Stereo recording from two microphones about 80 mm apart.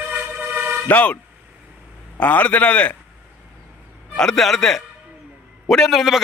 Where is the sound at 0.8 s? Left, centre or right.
Left.